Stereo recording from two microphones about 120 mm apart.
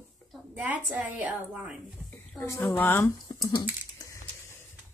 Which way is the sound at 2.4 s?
20° left (ahead or behind).